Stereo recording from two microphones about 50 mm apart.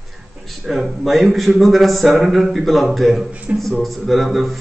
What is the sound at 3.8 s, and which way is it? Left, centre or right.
Speech, centre.